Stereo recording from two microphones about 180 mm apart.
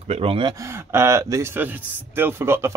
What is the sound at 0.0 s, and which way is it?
Speech, 35° right (ahead or behind).